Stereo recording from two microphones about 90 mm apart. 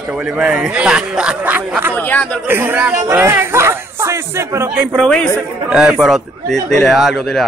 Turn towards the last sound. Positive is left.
turn(degrees=0)  # may be behind; listen again after turning